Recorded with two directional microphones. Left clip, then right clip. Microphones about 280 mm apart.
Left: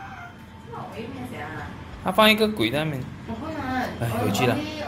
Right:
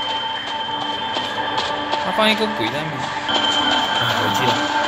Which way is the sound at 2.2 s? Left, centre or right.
Centre.